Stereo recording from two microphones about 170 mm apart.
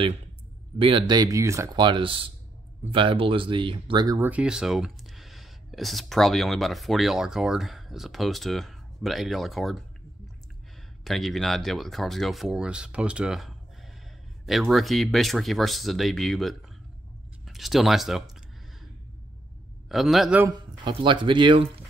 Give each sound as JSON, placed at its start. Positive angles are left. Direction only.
{"t": 0.7, "sound": "speech", "side_deg": -30}
{"t": 4.2, "sound": "speech", "side_deg": -10}
{"t": 11.1, "sound": "speech", "side_deg": 0}
{"t": 19.9, "sound": "speech", "side_deg": 0}
{"t": 20.4, "sound": "speech", "side_deg": -25}